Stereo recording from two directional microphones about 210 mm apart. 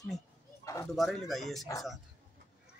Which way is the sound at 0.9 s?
Centre (ahead or behind).